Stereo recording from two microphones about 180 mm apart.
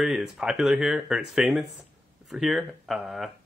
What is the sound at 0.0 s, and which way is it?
Speech, centre (ahead or behind).